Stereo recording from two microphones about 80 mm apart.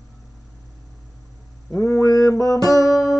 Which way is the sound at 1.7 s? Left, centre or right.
Left.